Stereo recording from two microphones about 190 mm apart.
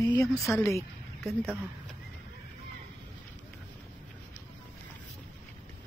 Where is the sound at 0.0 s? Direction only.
15° left (ahead or behind).